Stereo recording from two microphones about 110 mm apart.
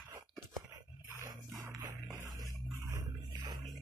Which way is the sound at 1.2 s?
35° right (ahead or behind).